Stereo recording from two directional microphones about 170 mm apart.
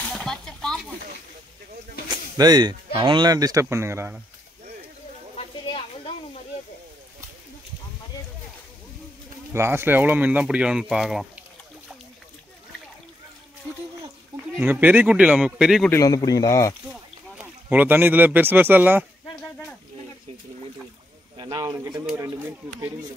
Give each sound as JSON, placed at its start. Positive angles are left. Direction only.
{"t": 0.0, "sound": "a sound", "side_deg": 5}
{"t": 2.0, "sound": "speech", "side_deg": -25}
{"t": 5.4, "sound": "a sound", "side_deg": 35}
{"t": 9.5, "sound": "speech", "side_deg": -15}
{"t": 14.5, "sound": "speech", "side_deg": -10}
{"t": 15.9, "sound": "speech", "side_deg": 20}
{"t": 16.9, "sound": "speech", "side_deg": -10}
{"t": 21.4, "sound": "speech", "side_deg": -25}